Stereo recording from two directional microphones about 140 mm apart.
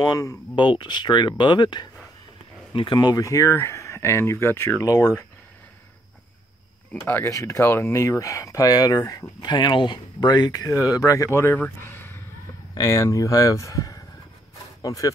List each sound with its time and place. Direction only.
0.0 s speech: 25° left (ahead or behind)
7.0 s speech: 20° left (ahead or behind)
11.8 s a sound: 15° left (ahead or behind)
12.7 s speech: 25° left (ahead or behind)